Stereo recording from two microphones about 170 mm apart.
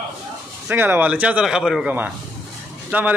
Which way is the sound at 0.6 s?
10° right (ahead or behind).